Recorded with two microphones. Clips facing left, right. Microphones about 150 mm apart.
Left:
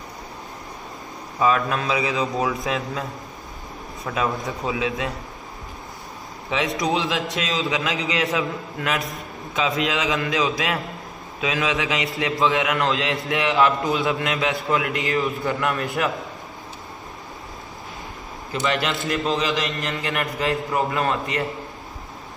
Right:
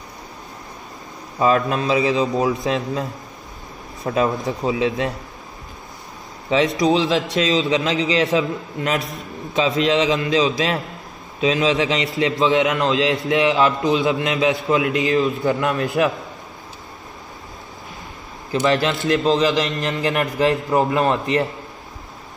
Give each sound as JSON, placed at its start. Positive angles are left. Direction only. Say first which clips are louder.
{"t": 1.4, "sound": "a man's voice", "louder": "right 3 dB", "side_deg": -30}
{"t": 4.0, "sound": "speech", "louder": "right 5 dB", "side_deg": -35}
{"t": 4.5, "sound": "a man's voice", "louder": "right 5 dB", "side_deg": -20}
{"t": 4.8, "sound": "a sound", "louder": "right 5 dB", "side_deg": -35}
{"t": 6.8, "sound": "a man's voice", "louder": "right 6 dB", "side_deg": -25}
{"t": 18.5, "sound": "a man's voice", "louder": "right 5 dB", "side_deg": -25}
{"t": 19.4, "sound": "a sound", "louder": "right 5 dB", "side_deg": -30}
{"t": 20.0, "sound": "a man's voice", "louder": "right 8 dB", "side_deg": -30}